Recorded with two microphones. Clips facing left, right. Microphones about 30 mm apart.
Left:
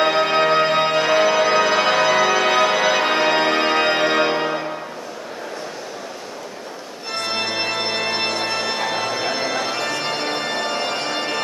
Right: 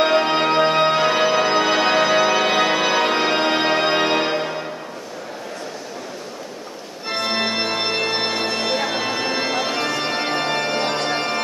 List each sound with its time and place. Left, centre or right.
0.0 s music: centre
7.1 s organ: centre